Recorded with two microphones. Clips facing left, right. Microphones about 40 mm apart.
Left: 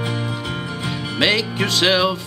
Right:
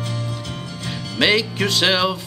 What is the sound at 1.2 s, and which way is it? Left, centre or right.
Music, centre.